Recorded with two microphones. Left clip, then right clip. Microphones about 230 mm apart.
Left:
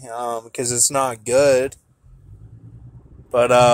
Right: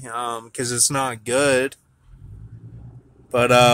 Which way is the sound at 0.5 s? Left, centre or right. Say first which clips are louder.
Left 2 dB; centre.